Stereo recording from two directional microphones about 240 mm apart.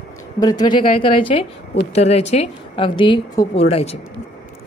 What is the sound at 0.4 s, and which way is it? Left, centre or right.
A woman's voice, centre.